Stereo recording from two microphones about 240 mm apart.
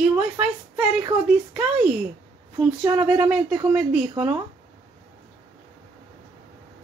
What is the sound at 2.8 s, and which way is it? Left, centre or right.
Speech, centre.